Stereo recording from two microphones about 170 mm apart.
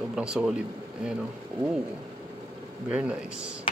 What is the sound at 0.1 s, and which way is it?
Speech, 5° right (ahead or behind).